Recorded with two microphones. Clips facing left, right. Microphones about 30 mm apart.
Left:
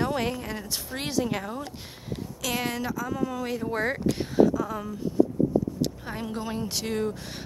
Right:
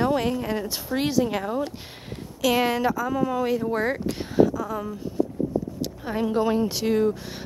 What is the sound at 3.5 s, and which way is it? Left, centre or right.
Speech, centre.